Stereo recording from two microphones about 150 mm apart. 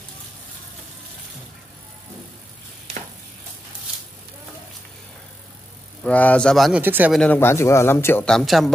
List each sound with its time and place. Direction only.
6.0 s speech: 10° left (ahead or behind)
6.8 s speech: 15° right (ahead or behind)
7.1 s speech: 5° left (ahead or behind)
7.3 s speech: 15° left (ahead or behind)
8.3 s speech: centre (ahead or behind)